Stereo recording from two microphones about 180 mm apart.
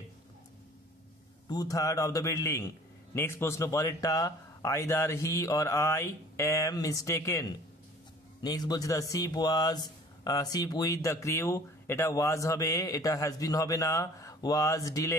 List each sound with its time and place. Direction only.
1.5 s a man's voice: 20° left (ahead or behind)